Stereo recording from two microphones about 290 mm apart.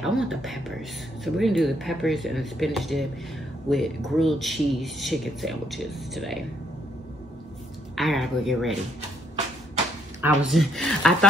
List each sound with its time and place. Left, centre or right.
0.0 s speech: centre
7.9 s speech: centre
10.2 s speech: centre